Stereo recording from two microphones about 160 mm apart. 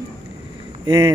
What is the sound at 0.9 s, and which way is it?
Speech, 25° right (ahead or behind).